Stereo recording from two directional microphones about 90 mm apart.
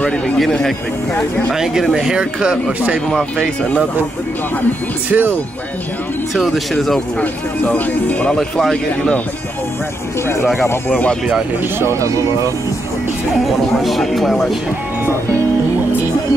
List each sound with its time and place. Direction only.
0.4 s speech: 5° left (ahead or behind); by 3.0 s 10° right (ahead or behind)
5.1 s speech: 10° right (ahead or behind)
6.3 s speech: centre (ahead or behind)
7.2 s speech: 15° left (ahead or behind)
8.4 s speech: 5° left (ahead or behind)
10.4 s speech: 5° right (ahead or behind)
10.7 s speech: 15° left (ahead or behind)
11.8 s speech: 35° right (ahead or behind)
13.5 s speech: centre (ahead or behind)